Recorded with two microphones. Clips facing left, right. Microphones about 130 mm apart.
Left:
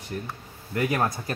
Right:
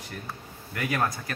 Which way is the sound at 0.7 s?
25° left (ahead or behind).